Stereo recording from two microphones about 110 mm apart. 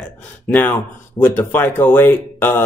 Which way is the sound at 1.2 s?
25° left (ahead or behind).